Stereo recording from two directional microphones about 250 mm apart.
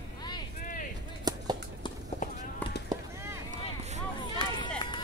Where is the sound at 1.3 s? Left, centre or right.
Centre.